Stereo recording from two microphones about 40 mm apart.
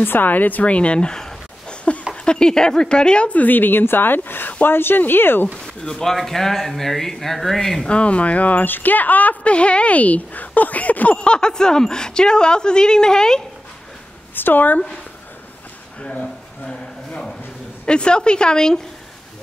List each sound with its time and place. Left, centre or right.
0.0 s a woman's voice: left
3.3 s speech: left
4.6 s speech: left
5.9 s speech: centre
7.8 s speech: left
8.6 s speech: left
9.5 s speech: left
11.1 s a woman's voice: left
14.3 s a woman's voice: left
16.0 s a sound: left
17.8 s a woman's voice: left